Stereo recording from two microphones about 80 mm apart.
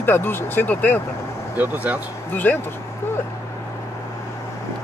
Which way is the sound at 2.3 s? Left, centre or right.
Left.